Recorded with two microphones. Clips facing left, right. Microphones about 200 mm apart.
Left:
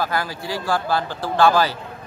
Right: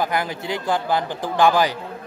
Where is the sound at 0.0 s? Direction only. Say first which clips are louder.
Right 1 dB; 20° right (ahead or behind).